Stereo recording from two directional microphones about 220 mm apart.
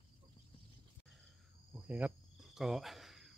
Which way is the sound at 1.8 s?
5° right (ahead or behind).